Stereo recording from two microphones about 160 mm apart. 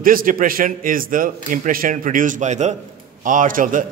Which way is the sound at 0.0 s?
60° right (ahead or behind).